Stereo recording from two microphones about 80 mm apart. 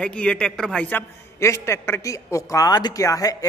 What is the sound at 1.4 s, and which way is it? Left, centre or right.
Speech, left.